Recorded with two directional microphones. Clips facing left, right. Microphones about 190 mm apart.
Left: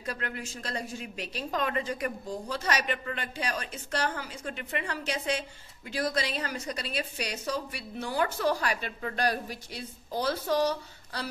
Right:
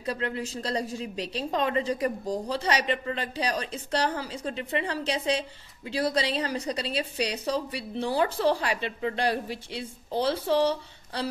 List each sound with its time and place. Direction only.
0.0 s a woman's voice: 30° right (ahead or behind)